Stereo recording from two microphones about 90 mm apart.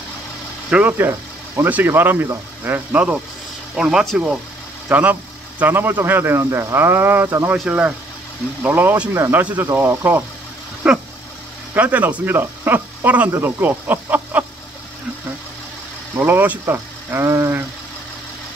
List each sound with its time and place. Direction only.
0.7 s speech: 10° right (ahead or behind)
1.6 s speech: 25° right (ahead or behind)
7.5 s speech: 10° right (ahead or behind)
9.7 s speech: 35° right (ahead or behind)
10.8 s speech: 15° right (ahead or behind)
16.2 s speech: 20° right (ahead or behind)